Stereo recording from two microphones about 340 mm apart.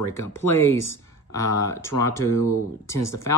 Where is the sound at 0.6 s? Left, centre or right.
Centre.